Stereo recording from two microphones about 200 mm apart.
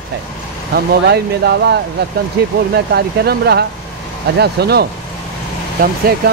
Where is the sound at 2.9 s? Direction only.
55° right (ahead or behind).